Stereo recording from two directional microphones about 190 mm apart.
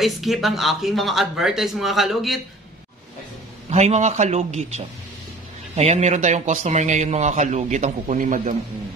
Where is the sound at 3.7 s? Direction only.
40° right (ahead or behind).